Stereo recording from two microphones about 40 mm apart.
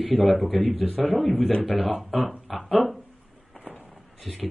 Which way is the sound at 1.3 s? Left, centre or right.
Left.